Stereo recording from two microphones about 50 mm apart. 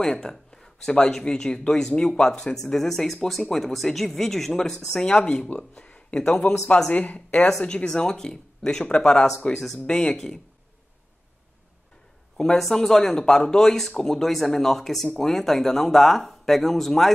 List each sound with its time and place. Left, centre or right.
0.0 s speech: centre
6.9 s speech: left; by 10.4 s centre
12.4 s speech: centre